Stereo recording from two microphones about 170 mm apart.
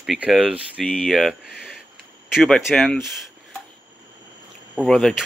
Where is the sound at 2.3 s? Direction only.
Centre (ahead or behind).